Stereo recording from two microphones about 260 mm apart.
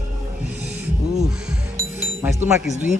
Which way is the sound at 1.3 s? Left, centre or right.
Centre.